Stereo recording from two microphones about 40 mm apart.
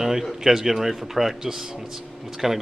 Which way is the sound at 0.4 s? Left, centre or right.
Centre.